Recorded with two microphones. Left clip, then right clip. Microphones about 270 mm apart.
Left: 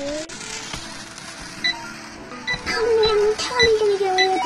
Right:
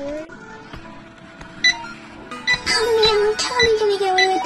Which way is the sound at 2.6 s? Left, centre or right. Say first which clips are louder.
Right 1 dB; centre.